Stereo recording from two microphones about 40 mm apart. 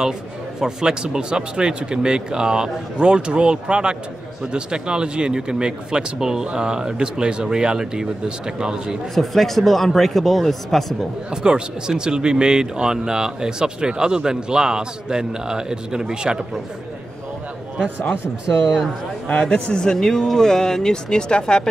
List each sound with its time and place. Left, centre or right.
0.6 s speech: centre
9.1 s speech: centre
11.4 s speech: centre
19.5 s speech: left